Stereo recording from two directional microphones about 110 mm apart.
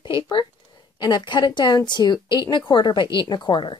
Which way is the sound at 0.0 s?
50° left (ahead or behind).